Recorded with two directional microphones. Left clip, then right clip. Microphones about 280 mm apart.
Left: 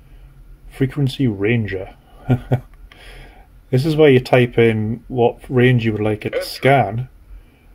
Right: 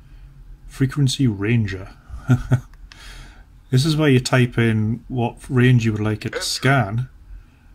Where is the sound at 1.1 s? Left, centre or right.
Right.